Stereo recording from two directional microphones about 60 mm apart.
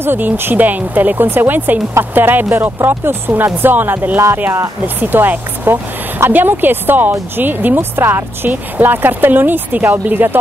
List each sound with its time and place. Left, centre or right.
0.0 s speech: right